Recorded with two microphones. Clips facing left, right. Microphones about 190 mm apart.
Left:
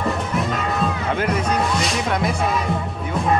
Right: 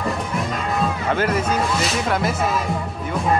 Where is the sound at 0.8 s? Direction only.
Centre (ahead or behind).